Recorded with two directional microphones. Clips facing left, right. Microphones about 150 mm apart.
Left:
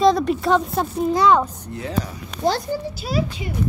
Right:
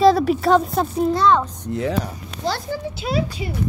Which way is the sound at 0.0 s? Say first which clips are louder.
Right 2 dB; 5° right (ahead or behind).